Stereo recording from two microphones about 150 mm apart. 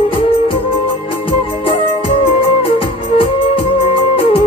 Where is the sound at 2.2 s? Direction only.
40° left (ahead or behind).